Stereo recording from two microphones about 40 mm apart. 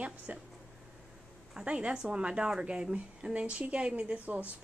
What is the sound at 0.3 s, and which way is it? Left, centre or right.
Speech, right.